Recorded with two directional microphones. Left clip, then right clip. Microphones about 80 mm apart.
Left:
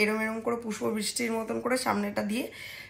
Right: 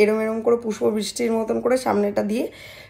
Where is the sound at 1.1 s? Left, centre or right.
Right.